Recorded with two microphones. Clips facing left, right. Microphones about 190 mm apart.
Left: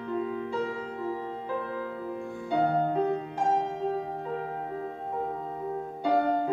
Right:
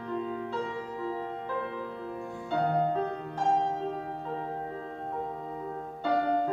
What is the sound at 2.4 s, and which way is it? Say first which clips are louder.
Music: left 2 dB; 10° left (ahead or behind).